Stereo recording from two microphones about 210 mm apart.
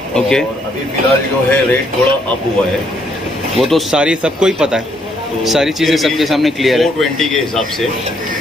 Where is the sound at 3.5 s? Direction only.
Centre (ahead or behind).